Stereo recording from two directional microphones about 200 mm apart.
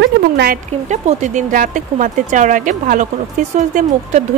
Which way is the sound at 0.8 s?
35° right (ahead or behind).